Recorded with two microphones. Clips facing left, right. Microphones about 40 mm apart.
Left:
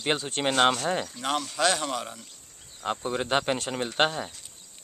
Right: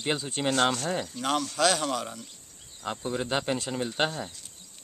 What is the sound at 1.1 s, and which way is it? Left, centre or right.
Speech, centre.